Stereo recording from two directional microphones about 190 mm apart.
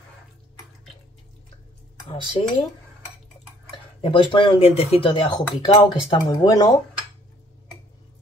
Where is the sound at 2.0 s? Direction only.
30° left (ahead or behind).